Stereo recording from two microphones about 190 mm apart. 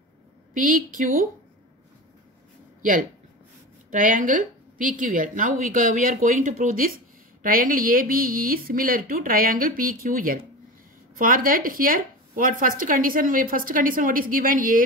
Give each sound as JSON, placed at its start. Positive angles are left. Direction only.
{"t": 0.6, "sound": "speech", "side_deg": -45}
{"t": 2.8, "sound": "speech", "side_deg": -45}